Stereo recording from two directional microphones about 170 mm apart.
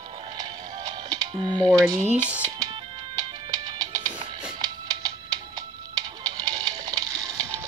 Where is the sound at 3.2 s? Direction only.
25° right (ahead or behind).